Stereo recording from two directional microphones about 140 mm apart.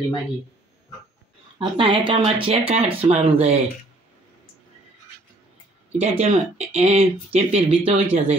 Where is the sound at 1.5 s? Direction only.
40° right (ahead or behind).